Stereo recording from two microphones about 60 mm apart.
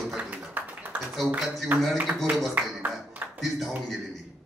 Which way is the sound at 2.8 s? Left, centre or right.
Right.